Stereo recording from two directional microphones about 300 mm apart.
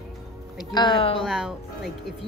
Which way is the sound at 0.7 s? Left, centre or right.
Centre.